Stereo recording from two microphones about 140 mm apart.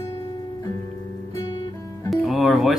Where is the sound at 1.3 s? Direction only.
25° left (ahead or behind).